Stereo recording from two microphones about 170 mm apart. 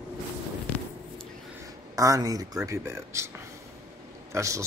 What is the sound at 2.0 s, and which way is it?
Speech, 20° right (ahead or behind).